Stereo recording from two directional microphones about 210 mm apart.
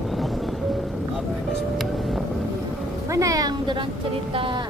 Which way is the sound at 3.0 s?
15° right (ahead or behind).